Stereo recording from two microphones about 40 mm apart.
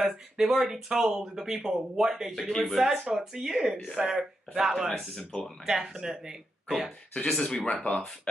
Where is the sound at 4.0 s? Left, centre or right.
Right.